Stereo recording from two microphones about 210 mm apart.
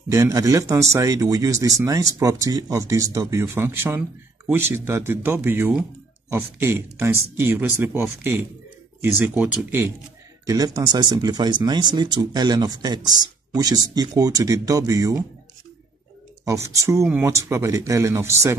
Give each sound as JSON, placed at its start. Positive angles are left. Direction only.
{"t": 0.1, "sound": "speech", "side_deg": -15}
{"t": 16.4, "sound": "speech", "side_deg": -15}